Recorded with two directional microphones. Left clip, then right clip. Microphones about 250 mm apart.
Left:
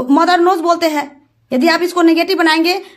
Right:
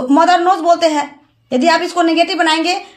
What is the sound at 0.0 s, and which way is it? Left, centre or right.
A woman's voice, centre.